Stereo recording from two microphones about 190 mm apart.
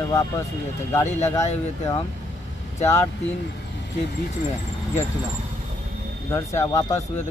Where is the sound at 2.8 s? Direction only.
15° left (ahead or behind).